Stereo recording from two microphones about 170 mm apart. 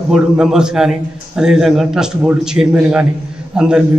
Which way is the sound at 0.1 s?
5° right (ahead or behind).